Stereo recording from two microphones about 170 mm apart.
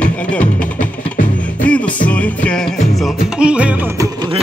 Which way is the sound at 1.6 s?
10° left (ahead or behind).